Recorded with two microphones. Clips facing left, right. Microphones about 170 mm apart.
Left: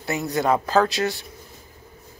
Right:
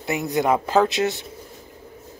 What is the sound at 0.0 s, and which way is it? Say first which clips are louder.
A man's voice: right 1 dB; 20° right (ahead or behind).